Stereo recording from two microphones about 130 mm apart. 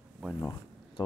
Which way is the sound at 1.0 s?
35° left (ahead or behind).